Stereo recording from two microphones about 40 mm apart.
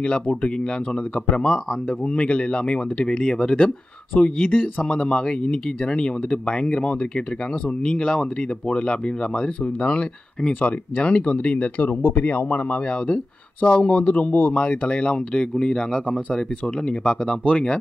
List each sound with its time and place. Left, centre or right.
0.0 s speech: left
1.3 s speech: centre
2.0 s speech: left
4.4 s speech: left
4.8 s speech: left
11.8 s speech: left
12.2 s speech: left
14.6 s speech: left
17.3 s speech: left